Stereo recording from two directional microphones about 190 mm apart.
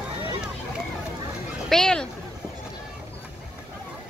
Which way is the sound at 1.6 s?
5° left (ahead or behind).